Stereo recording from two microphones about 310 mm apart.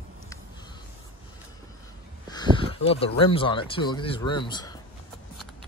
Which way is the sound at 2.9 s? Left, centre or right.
Centre.